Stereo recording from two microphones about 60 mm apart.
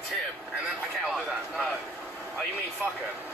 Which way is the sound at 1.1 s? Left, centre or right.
Centre.